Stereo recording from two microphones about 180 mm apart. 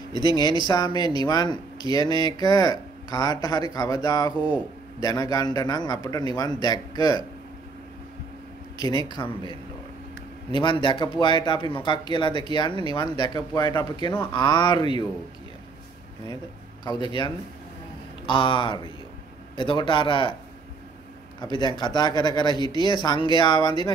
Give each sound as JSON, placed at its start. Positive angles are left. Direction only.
{"t": 0.1, "sound": "speech", "side_deg": 25}
{"t": 8.9, "sound": "speech", "side_deg": 25}
{"t": 10.5, "sound": "speech", "side_deg": 25}
{"t": 16.8, "sound": "speech", "side_deg": 25}
{"t": 21.4, "sound": "speech", "side_deg": 25}